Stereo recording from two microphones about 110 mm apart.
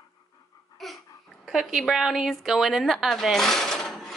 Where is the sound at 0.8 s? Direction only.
Centre (ahead or behind).